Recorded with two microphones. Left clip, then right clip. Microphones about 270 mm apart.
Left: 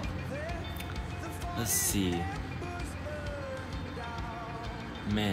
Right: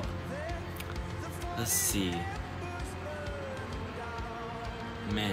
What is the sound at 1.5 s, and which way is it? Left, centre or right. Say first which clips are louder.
Speech: even; centre.